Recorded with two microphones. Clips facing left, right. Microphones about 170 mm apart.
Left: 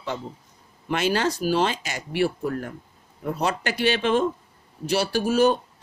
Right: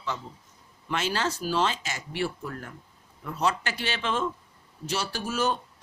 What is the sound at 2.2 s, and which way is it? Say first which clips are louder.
Speech: left 8 dB; 50° left (ahead or behind).